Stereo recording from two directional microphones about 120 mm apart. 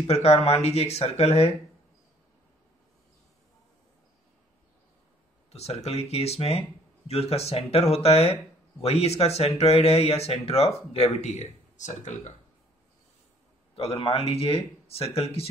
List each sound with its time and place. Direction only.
0.0 s speech: 60° left (ahead or behind)
5.5 s speech: 60° left (ahead or behind)
11.7 s speech: 90° left
13.7 s speech: 55° left (ahead or behind)